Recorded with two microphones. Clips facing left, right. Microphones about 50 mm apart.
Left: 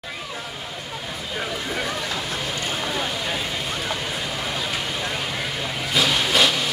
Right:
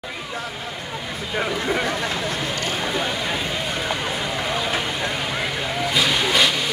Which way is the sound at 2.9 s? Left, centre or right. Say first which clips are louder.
Right 2 dB; right.